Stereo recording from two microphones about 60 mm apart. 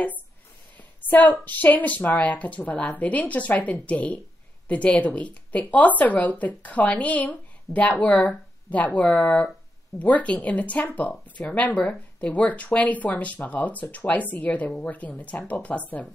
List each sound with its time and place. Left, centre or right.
0.7 s speech: left